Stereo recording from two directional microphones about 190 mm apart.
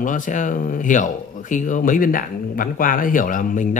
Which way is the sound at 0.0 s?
45° left (ahead or behind).